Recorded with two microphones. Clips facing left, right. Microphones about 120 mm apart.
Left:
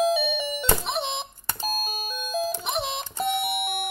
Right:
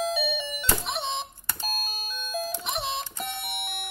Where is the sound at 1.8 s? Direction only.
15° left (ahead or behind).